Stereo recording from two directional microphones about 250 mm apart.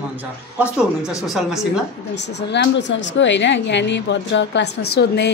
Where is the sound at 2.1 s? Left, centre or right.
Left.